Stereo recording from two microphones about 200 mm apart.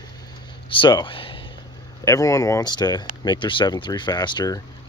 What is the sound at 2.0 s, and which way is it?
Speech, 15° left (ahead or behind).